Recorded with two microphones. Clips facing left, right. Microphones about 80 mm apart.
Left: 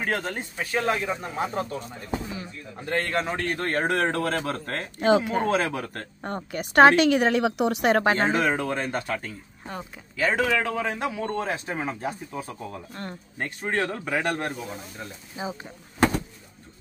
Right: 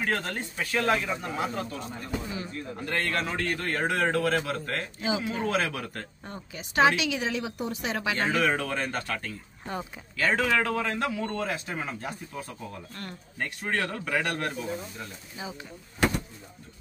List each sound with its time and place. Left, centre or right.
0.1 s a man's voice: centre; by 4.8 s left
4.9 s a woman's voice: left
5.5 s a man's voice: left
5.9 s a woman's voice: left
8.3 s a man's voice: left
15.3 s speech: left